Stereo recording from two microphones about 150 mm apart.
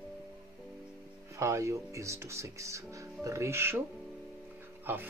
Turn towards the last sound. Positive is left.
turn(degrees=-15)  # may be behind; listen again after turning